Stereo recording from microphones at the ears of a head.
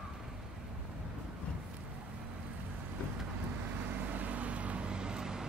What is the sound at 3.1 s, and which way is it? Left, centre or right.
Vehicle, right.